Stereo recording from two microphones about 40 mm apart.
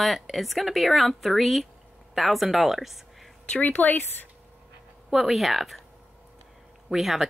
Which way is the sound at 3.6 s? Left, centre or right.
Left.